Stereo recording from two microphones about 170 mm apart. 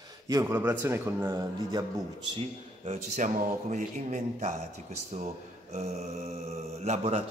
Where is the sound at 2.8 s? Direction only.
45° right (ahead or behind).